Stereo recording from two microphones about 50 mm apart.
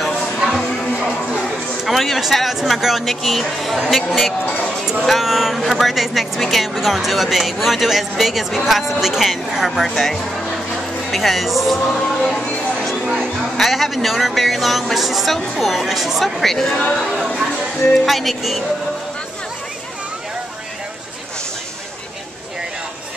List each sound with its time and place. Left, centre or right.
0.0 s music: centre
1.9 s a woman's voice: centre
4.5 s speech: left
5.0 s a woman's voice: centre
12.0 s a sound: centre
13.1 s a woman's voice: centre